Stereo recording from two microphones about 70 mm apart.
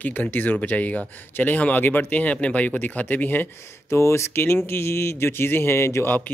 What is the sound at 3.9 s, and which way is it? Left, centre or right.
A man's voice, left.